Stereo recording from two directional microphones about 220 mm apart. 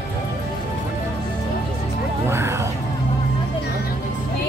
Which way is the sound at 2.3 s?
10° right (ahead or behind).